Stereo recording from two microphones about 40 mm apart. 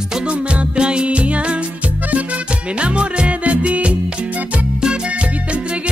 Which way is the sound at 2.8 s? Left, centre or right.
Right.